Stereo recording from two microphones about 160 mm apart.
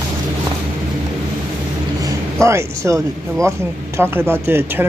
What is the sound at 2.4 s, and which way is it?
Speech, 15° right (ahead or behind).